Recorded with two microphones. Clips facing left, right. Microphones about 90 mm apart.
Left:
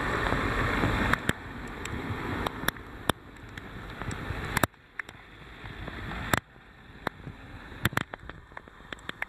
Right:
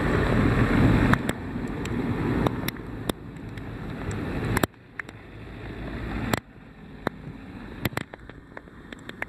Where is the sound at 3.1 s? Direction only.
45° left (ahead or behind).